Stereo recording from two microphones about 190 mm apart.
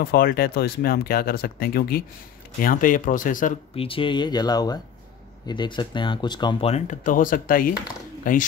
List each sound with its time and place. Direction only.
0.0 s speech: 55° left (ahead or behind)
3.7 s speech: 30° left (ahead or behind); by 8.5 s 45° left (ahead or behind)